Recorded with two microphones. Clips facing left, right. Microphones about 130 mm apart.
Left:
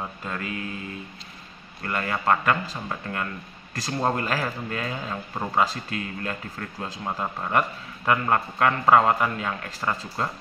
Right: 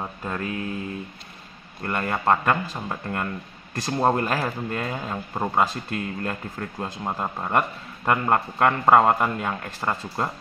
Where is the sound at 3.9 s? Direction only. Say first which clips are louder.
Right 4 dB; 20° right (ahead or behind).